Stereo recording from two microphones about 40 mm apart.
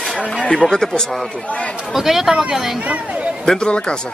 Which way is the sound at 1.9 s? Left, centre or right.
Centre.